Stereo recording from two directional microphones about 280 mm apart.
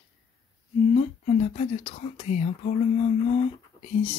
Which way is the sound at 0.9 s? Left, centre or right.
Left.